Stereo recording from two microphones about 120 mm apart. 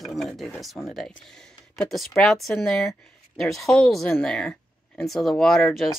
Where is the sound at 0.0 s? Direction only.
Centre (ahead or behind).